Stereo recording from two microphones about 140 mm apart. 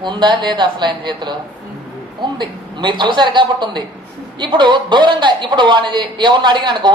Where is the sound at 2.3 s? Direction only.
35° right (ahead or behind).